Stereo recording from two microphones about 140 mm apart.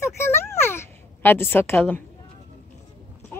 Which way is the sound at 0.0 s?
20° left (ahead or behind).